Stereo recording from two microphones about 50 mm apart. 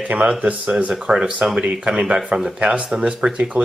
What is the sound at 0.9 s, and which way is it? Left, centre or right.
Speech, centre.